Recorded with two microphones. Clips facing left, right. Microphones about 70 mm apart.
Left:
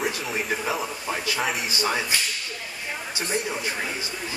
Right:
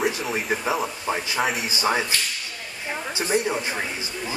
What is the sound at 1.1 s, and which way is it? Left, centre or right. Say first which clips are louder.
Speech: right 1 dB; centre.